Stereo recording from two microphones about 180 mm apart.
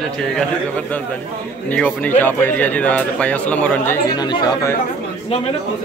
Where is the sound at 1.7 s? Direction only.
10° left (ahead or behind).